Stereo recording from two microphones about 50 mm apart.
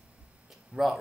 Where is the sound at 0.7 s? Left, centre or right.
Centre.